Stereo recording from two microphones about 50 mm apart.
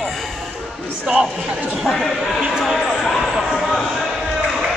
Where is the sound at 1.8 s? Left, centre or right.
Centre.